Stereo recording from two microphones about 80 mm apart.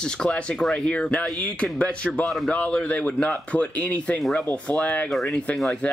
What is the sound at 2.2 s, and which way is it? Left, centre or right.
Speech, centre.